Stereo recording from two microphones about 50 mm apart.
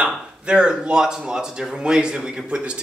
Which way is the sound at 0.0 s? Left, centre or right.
Centre.